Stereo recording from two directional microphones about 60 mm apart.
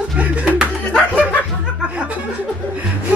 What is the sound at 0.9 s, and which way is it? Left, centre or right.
Snicker, centre.